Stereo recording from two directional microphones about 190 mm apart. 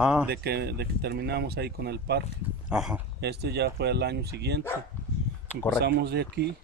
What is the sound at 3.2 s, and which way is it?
Speech, 60° right (ahead or behind).